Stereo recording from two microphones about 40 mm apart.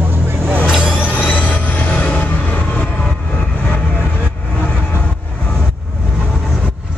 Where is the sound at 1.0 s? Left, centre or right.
Left.